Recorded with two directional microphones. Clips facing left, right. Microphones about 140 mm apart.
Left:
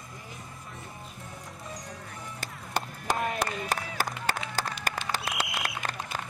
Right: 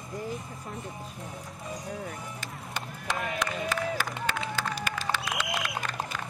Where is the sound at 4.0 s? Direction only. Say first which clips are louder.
Even; 40° left (ahead or behind).